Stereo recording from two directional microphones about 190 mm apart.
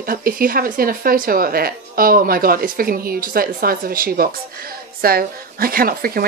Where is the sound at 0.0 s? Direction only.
50° right (ahead or behind).